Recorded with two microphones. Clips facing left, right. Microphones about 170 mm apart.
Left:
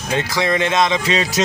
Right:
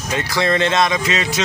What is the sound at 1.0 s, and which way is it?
Speech, 35° left (ahead or behind).